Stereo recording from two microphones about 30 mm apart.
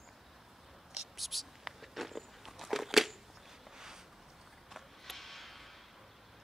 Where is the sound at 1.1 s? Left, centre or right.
Centre.